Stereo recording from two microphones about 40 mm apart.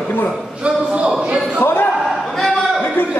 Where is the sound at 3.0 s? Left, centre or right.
Left.